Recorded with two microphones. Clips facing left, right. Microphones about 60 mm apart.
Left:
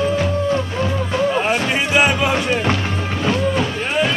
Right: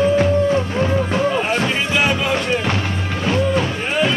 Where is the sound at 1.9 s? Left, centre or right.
Centre.